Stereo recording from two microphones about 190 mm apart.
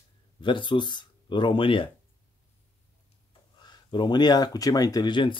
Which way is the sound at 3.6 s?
25° left (ahead or behind).